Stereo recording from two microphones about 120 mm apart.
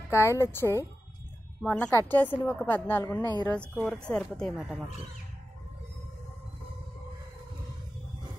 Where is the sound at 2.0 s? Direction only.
15° left (ahead or behind).